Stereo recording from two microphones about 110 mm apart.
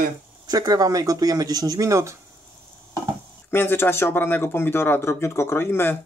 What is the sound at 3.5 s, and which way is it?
Speech, 20° left (ahead or behind).